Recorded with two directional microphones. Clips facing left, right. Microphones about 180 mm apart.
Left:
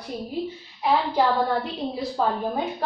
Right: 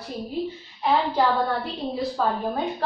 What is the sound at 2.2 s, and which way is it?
Speech, 20° left (ahead or behind).